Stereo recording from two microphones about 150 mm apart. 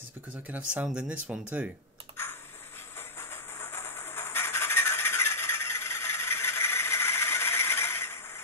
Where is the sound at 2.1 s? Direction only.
15° left (ahead or behind).